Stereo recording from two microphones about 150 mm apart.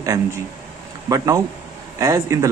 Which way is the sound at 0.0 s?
20° right (ahead or behind).